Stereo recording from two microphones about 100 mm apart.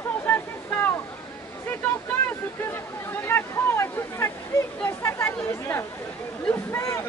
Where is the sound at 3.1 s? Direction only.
25° left (ahead or behind).